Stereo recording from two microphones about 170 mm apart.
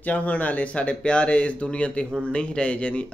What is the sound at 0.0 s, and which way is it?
Speech, 10° left (ahead or behind).